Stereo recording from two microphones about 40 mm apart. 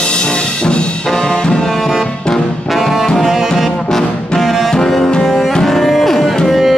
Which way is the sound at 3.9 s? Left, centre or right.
Centre.